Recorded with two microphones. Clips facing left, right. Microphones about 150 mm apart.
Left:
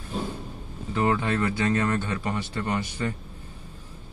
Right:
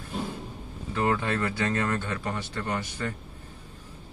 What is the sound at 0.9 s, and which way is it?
Speech, 25° left (ahead or behind).